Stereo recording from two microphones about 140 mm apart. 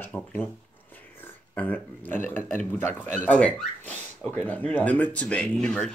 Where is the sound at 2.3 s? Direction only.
60° right (ahead or behind).